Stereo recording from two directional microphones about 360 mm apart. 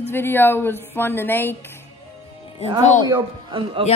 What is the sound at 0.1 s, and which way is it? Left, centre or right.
A woman's voice, centre.